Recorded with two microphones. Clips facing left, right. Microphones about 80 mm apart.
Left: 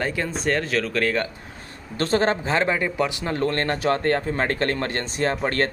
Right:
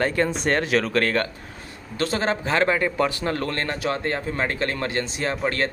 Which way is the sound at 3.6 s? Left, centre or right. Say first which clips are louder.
Left 3 dB; left.